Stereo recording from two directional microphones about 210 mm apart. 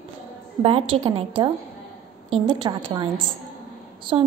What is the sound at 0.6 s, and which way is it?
A woman's voice, 25° right (ahead or behind).